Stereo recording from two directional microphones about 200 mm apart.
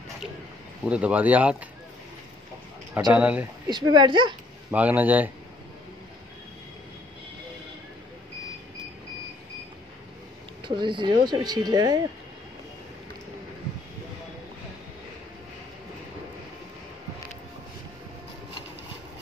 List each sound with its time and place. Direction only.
0.8 s speech: 5° right (ahead or behind)
3.1 s speech: 5° right (ahead or behind)
3.6 s speech: 20° right (ahead or behind)
4.6 s speech: 10° right (ahead or behind)
10.7 s speech: 25° right (ahead or behind)